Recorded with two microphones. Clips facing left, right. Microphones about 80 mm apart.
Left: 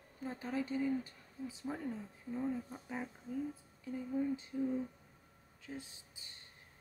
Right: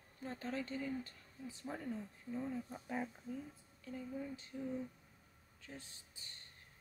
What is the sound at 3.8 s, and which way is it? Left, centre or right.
Speech, centre.